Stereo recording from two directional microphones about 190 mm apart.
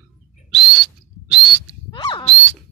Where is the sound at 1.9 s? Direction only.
25° left (ahead or behind).